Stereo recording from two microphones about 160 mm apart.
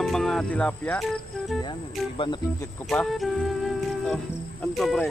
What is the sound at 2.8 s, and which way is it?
Music, centre (ahead or behind).